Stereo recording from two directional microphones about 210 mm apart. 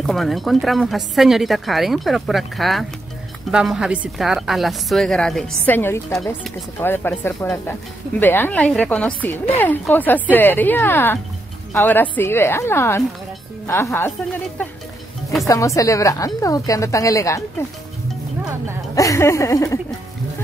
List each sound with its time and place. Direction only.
0.0 s a woman's voice: centre (ahead or behind)
18.4 s speech: 10° right (ahead or behind)
18.9 s a woman's voice: 15° left (ahead or behind)